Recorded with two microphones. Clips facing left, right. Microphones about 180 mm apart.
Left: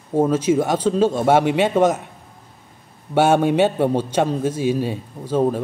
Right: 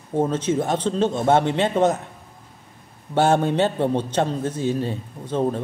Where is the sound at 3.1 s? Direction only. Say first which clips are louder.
Left 3 dB; 10° left (ahead or behind).